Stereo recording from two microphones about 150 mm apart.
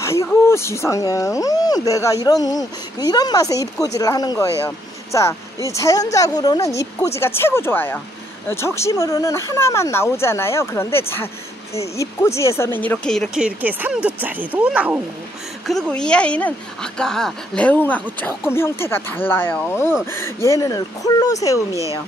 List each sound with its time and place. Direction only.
0.0 s a sound: 20° left (ahead or behind)
0.5 s speech: 20° left (ahead or behind)
13.4 s speech: 10° right (ahead or behind)
15.6 s speech: 5° left (ahead or behind); by 21.6 s 20° left (ahead or behind)